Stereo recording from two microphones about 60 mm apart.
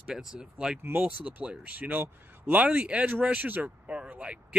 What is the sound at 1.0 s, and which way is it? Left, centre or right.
Speech, right.